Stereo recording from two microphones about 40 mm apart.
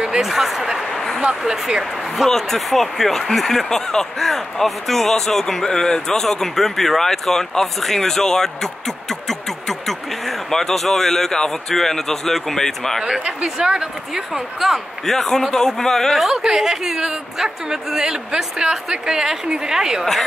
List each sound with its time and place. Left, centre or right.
0.2 s speech: centre
0.9 s a sound: centre
1.4 s a woman's voice: centre
2.2 s speech: centre
13.0 s speech: right
14.1 s a woman's voice: centre
15.0 s speech: centre
16.3 s a woman's voice: centre